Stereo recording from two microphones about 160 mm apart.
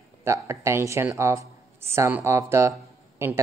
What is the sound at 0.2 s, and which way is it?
Speech, 15° right (ahead or behind).